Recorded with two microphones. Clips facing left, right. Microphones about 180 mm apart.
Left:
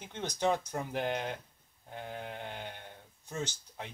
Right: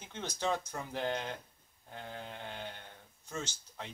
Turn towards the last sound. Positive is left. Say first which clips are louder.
# left 3 dB
turn(degrees=15)  # may be behind; listen again after turning